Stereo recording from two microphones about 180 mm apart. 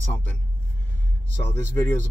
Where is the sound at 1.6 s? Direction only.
15° left (ahead or behind).